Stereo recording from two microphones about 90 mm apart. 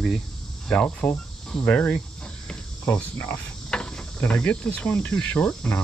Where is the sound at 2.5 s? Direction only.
15° left (ahead or behind).